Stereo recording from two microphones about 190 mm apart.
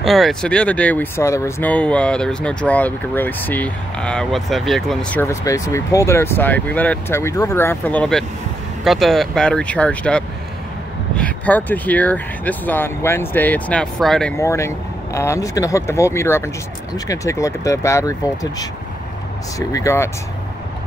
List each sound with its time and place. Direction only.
0.0 s speech: centre (ahead or behind)
14.3 s speech: 15° left (ahead or behind)
19.7 s speech: 15° left (ahead or behind)